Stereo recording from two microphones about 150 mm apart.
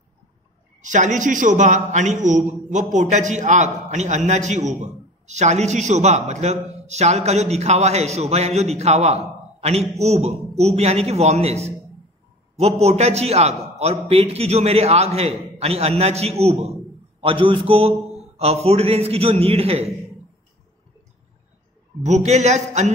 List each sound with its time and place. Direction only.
0.8 s a man's voice: 55° right (ahead or behind)
22.0 s a man's voice: 50° right (ahead or behind)